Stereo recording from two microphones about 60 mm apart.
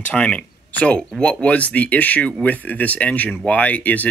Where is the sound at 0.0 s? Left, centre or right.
Left.